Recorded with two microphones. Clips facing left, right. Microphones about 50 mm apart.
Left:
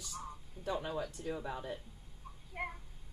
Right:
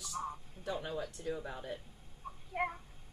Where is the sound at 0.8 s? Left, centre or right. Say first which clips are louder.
Left 1 dB; left.